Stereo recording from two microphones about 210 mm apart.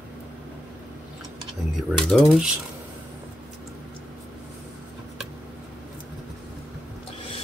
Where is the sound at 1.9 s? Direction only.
Centre (ahead or behind).